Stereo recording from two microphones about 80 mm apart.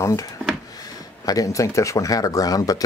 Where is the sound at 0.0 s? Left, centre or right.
Left.